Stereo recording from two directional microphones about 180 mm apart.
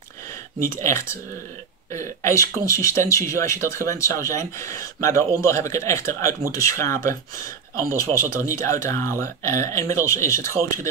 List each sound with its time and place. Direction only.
0.8 s speech: 15° left (ahead or behind)